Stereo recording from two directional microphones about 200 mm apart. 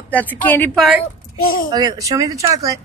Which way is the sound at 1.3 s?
45° left (ahead or behind).